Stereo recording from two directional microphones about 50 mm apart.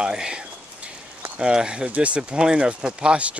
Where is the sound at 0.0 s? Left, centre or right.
Centre.